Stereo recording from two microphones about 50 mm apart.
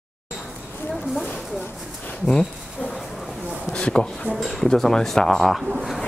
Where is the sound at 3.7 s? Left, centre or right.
Centre.